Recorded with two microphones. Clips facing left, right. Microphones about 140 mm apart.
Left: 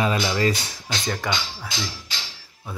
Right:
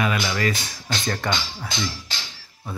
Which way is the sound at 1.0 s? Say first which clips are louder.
Right 1 dB; 5° left (ahead or behind).